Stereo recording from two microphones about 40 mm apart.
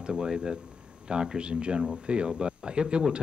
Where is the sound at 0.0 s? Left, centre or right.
Right.